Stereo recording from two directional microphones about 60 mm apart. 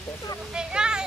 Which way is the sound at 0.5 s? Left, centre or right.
Centre.